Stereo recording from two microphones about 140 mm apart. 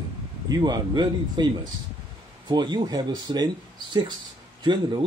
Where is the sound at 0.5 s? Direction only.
30° right (ahead or behind).